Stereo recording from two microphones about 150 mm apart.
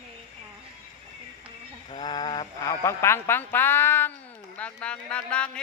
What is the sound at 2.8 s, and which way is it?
Speech, 15° left (ahead or behind).